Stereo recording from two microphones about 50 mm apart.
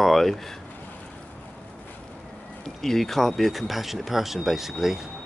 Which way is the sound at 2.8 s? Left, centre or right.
Centre.